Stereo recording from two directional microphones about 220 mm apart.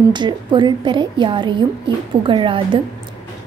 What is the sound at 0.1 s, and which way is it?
A woman's voice, 20° right (ahead or behind).